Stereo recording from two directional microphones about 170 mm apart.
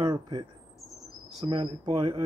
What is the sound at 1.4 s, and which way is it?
Speech, 30° right (ahead or behind).